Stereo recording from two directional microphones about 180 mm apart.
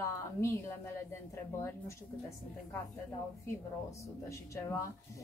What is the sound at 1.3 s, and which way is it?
Speech, 15° left (ahead or behind).